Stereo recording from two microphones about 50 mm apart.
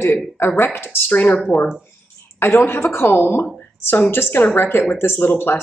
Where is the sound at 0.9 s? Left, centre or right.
Left.